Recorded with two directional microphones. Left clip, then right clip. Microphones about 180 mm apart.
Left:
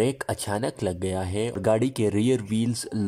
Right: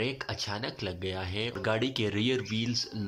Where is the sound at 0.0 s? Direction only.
35° left (ahead or behind).